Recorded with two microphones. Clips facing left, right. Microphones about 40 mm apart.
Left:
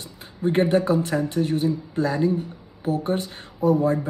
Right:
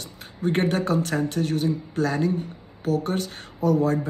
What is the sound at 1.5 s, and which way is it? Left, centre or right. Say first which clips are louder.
Speech: left 2 dB; left.